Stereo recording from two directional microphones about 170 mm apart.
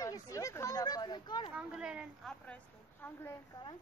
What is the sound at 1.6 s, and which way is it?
Speech, 5° right (ahead or behind).